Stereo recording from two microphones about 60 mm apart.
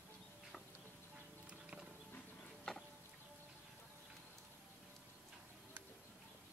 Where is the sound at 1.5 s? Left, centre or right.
Centre.